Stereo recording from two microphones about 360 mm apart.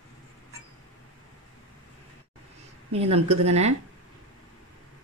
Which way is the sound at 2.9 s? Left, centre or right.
Centre.